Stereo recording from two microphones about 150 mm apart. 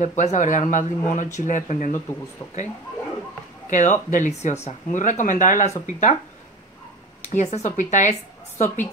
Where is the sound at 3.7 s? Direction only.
55° left (ahead or behind).